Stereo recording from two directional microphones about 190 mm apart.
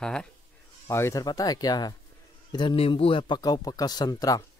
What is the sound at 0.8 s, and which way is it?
Speech, 15° left (ahead or behind).